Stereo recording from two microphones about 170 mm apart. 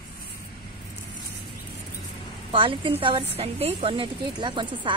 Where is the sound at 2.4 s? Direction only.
30° right (ahead or behind).